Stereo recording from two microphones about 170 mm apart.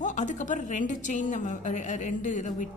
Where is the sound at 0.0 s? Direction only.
45° left (ahead or behind).